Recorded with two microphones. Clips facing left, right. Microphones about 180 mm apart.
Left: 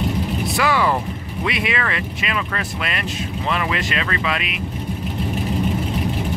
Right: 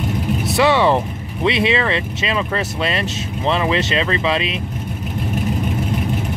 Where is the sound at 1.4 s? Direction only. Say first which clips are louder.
Right 6 dB; 25° right (ahead or behind).